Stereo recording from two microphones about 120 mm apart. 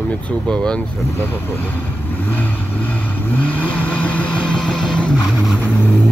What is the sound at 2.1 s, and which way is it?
Vehicle, 15° left (ahead or behind).